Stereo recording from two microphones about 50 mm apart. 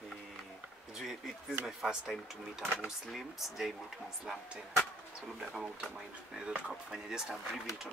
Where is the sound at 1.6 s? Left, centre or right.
Centre.